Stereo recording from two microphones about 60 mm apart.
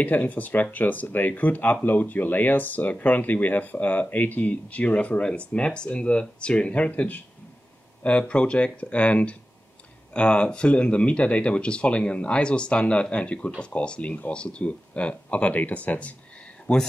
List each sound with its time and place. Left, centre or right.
0.0 s speech: left